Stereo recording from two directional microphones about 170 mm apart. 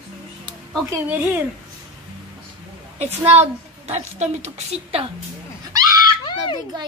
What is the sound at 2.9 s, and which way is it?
A woman's voice, 40° right (ahead or behind).